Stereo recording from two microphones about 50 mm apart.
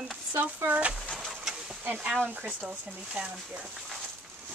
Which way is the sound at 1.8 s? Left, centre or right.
Right.